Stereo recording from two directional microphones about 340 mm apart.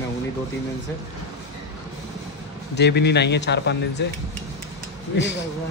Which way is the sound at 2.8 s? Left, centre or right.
Left.